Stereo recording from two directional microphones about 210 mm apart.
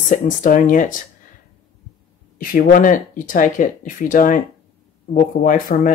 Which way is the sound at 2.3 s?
40° left (ahead or behind).